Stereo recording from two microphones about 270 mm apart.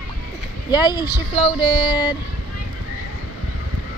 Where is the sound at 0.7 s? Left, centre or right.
Centre.